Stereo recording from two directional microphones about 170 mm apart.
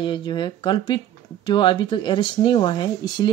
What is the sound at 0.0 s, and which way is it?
Speech, 25° left (ahead or behind).